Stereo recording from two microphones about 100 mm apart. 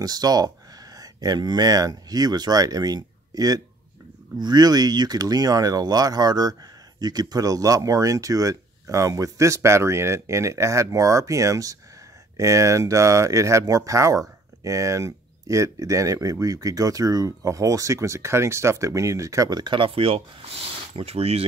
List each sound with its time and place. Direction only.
0.0 s speech: 40° right (ahead or behind); by 21.5 s 85° right